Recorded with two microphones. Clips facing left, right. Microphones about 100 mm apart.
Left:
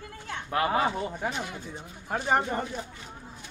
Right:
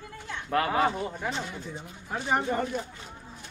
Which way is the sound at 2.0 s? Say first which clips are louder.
Left 2 dB; 40° left (ahead or behind).